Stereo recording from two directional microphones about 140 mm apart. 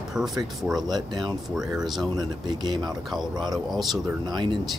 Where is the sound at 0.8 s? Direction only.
30° right (ahead or behind).